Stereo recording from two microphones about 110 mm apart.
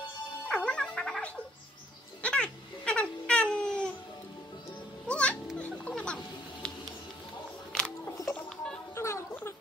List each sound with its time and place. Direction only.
0.5 s music: 10° left (ahead or behind)
2.2 s babbling: 10° left (ahead or behind)
5.0 s music: 10° left (ahead or behind)
8.9 s a sound: 25° left (ahead or behind)